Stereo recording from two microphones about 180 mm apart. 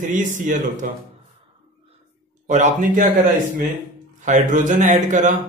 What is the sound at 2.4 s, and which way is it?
Speech, 45° right (ahead or behind).